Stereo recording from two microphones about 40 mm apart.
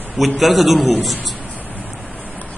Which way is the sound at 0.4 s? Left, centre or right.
Centre.